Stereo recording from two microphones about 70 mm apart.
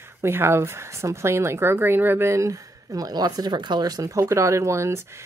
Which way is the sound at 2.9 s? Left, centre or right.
Right.